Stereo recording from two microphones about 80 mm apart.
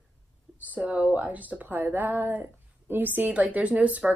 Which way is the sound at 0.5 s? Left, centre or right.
Centre.